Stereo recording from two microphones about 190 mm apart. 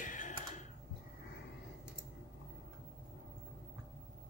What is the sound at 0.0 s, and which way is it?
Typing, 40° left (ahead or behind).